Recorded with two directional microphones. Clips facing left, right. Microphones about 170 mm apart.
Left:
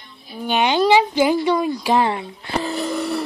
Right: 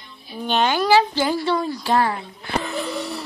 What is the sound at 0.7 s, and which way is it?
Speech, 20° left (ahead or behind).